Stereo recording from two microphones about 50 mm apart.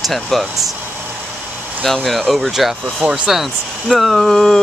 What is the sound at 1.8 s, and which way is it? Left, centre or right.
Speech, centre.